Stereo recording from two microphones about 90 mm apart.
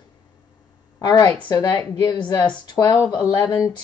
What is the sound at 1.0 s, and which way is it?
A woman's voice, 50° left (ahead or behind).